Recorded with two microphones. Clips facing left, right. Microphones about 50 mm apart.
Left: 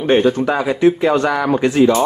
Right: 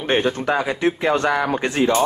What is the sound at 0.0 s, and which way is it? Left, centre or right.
Speech, right.